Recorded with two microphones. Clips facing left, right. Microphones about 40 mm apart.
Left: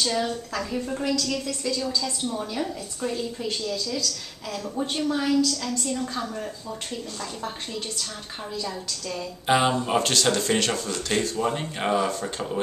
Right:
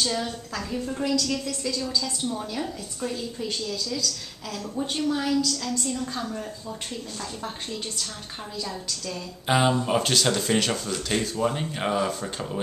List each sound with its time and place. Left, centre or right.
0.1 s a woman's voice: centre
2.0 s a woman's voice: centre
9.5 s speech: centre